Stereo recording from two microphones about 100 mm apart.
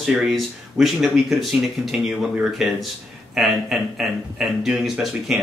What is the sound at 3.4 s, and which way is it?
Speech, 5° right (ahead or behind).